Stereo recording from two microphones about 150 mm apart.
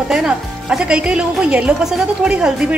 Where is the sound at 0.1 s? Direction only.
5° right (ahead or behind).